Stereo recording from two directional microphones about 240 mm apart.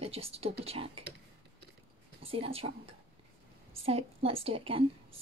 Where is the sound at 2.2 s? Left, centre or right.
Right.